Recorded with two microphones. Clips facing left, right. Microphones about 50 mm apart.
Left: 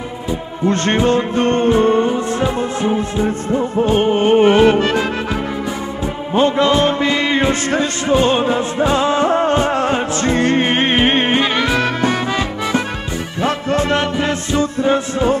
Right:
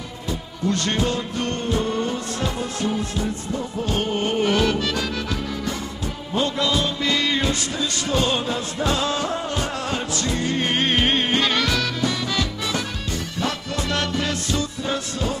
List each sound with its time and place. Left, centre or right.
0.7 s music: left
2.0 s music: left
11.8 s music: left